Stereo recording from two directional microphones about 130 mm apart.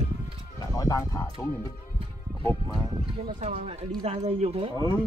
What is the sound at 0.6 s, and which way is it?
Speech, 25° left (ahead or behind).